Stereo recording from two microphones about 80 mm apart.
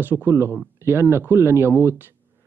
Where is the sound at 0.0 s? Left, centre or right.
Right.